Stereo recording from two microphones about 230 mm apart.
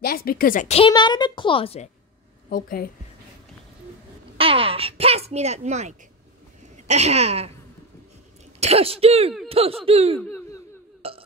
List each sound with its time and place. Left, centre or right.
0.0 s a woman's voice: left
2.5 s a woman's voice: left
4.4 s speech: right
8.5 s speech: right
11.0 s a sound: right